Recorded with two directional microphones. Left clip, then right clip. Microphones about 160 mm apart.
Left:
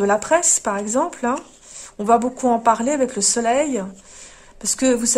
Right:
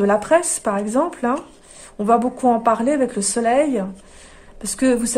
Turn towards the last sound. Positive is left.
turn(degrees=30)  # may be behind; listen again after turning